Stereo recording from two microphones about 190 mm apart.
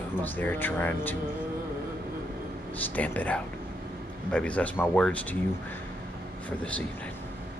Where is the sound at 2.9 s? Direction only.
10° left (ahead or behind).